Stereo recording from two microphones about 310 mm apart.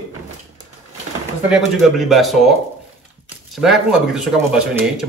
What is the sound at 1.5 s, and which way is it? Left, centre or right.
Speech, centre.